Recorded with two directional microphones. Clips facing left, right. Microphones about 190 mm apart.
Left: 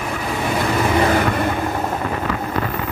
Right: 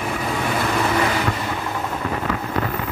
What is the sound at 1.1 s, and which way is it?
Vehicle, 55° left (ahead or behind).